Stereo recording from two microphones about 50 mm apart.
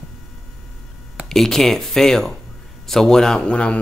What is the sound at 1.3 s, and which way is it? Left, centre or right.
Speech, centre.